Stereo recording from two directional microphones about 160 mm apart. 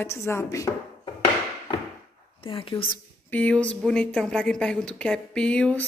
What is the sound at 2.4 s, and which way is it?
Speech, 35° left (ahead or behind).